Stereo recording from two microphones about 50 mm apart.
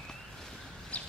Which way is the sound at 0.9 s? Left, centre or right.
Left.